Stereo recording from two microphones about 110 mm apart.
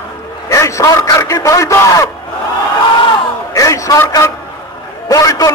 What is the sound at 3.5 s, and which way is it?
A man's voice, 30° left (ahead or behind).